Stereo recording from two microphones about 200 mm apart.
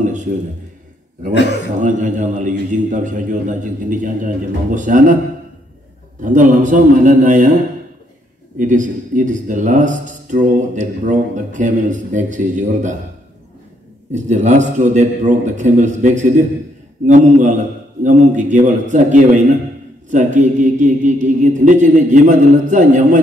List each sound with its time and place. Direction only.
0.0 s a sound: 40° right (ahead or behind)
1.8 s speech: 40° right (ahead or behind)
6.2 s speech: 40° right (ahead or behind)
8.5 s speech: 40° right (ahead or behind)
14.1 s speech: 35° right (ahead or behind)